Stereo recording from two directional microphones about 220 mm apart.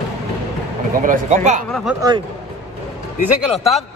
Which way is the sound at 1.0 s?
35° right (ahead or behind).